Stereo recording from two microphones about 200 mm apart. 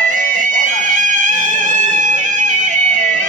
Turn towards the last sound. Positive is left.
turn(degrees=-40)  # may be behind; listen again after turning